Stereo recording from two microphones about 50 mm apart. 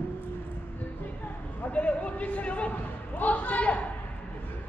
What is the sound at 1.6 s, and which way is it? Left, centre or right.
A man's voice, left.